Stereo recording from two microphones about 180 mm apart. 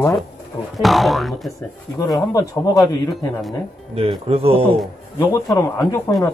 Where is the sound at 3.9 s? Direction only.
30° right (ahead or behind).